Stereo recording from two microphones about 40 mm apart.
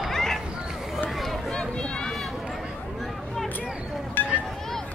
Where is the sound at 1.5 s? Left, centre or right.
Centre.